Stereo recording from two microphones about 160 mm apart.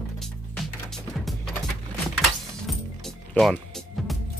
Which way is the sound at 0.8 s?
Centre (ahead or behind).